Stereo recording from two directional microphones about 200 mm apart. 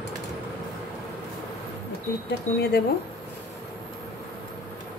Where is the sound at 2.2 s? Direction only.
55° left (ahead or behind).